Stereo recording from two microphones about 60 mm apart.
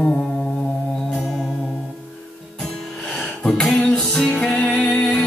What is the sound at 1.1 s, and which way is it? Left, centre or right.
Music, centre.